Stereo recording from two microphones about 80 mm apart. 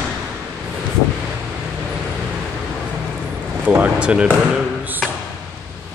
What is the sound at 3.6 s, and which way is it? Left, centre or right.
Speech, right.